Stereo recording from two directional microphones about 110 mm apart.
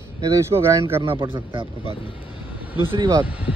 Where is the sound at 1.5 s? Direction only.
55° right (ahead or behind).